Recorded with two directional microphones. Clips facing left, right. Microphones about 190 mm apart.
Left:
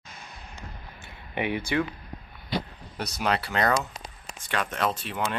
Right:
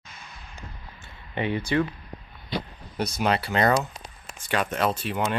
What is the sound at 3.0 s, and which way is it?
Speech, centre (ahead or behind).